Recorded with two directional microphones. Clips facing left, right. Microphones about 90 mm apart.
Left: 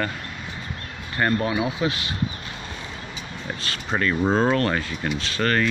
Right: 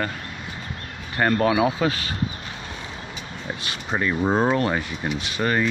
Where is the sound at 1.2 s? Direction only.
50° right (ahead or behind).